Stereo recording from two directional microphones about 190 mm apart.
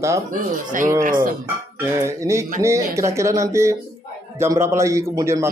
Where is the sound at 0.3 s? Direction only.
45° right (ahead or behind).